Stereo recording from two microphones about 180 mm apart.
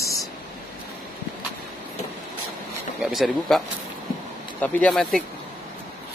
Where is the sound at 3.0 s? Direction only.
Centre (ahead or behind).